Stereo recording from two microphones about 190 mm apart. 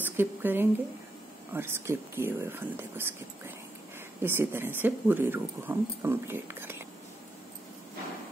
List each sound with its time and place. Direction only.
0.0 s speech: 10° right (ahead or behind)